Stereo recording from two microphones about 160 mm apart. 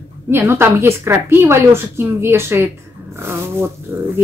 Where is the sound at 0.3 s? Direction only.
15° right (ahead or behind).